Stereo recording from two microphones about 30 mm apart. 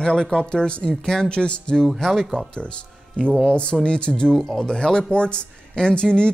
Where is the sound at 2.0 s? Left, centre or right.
Centre.